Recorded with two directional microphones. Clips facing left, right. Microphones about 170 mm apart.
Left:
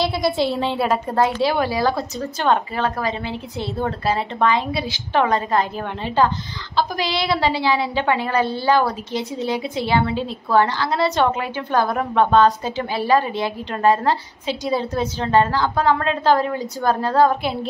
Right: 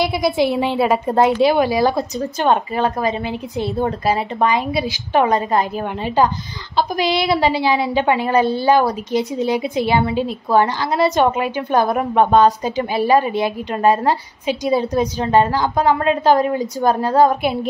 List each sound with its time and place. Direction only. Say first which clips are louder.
0.0 s a woman's voice: right 3 dB; 15° right (ahead or behind)
0.7 s a woman's voice: right 5 dB; 5° right (ahead or behind)
1.0 s a woman's voice: right 5 dB; 20° right (ahead or behind)